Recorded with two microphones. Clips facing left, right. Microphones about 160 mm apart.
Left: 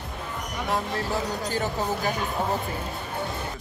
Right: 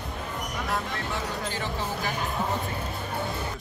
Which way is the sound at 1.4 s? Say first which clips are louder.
Left 5 dB; 40° left (ahead or behind).